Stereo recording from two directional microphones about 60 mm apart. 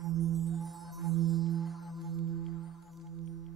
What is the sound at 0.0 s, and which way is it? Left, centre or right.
Music, centre.